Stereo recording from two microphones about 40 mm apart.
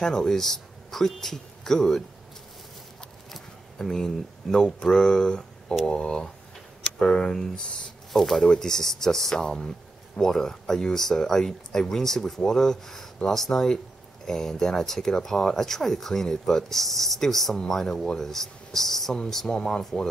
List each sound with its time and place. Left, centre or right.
0.0 s speech: centre
3.3 s speech: centre